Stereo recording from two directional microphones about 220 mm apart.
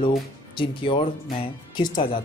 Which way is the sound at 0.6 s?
25° left (ahead or behind).